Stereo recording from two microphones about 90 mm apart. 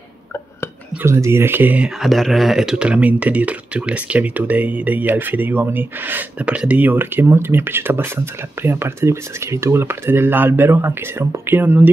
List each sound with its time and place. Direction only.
1.0 s speech: 30° right (ahead or behind)
2.0 s speech: centre (ahead or behind); by 11.9 s 20° right (ahead or behind)